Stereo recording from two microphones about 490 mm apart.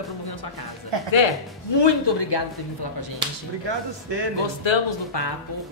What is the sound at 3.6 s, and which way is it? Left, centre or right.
Speech, right.